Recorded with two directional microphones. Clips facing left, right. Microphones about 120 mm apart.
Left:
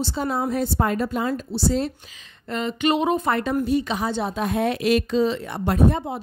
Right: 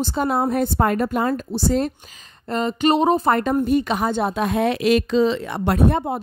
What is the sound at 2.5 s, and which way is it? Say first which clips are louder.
Speech: right 3 dB; 40° right (ahead or behind).